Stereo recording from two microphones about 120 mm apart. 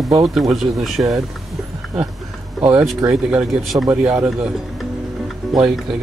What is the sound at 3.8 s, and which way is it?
Speech, 10° right (ahead or behind).